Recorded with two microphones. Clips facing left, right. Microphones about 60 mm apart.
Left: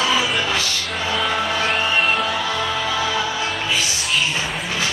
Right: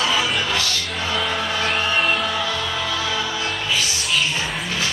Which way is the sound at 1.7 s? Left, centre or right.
Centre.